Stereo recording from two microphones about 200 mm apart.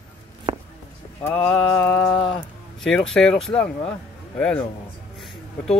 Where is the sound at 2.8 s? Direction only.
5° left (ahead or behind).